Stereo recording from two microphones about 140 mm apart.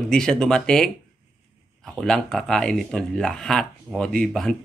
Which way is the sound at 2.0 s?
5° left (ahead or behind).